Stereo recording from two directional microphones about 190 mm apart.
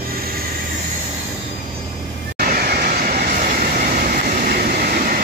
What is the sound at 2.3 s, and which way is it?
Vehicle, 50° right (ahead or behind).